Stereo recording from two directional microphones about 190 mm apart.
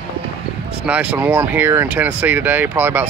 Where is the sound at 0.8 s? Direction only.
5° right (ahead or behind).